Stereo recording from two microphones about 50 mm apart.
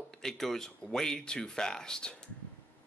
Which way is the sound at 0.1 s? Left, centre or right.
Centre.